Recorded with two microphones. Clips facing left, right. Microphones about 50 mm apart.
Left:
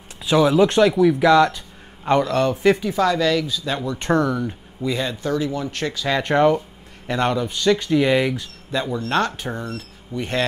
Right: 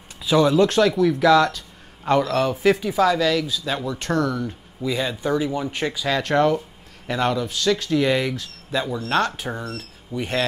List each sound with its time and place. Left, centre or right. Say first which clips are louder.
0.2 s speech: left 1 dB; centre
2.1 s speech: left 2 dB; centre
4.1 s speech: left 3 dB; left
4.8 s speech: left 1 dB; centre
5.2 s speech: even; centre
6.0 s speech: left 2 dB; centre